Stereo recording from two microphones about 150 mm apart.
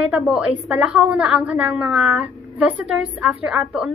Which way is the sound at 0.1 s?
5° right (ahead or behind).